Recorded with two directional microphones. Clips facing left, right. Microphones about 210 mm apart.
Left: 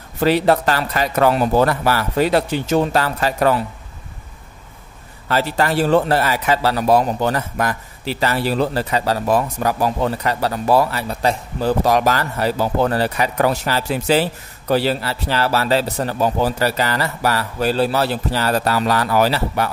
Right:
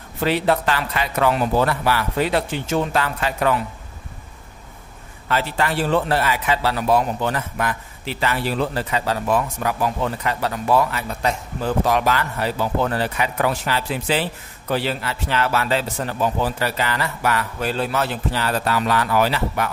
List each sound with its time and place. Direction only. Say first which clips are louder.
0.2 s a man's voice: left 4 dB; 40° left (ahead or behind)
5.3 s a man's voice: left 4 dB; 40° left (ahead or behind)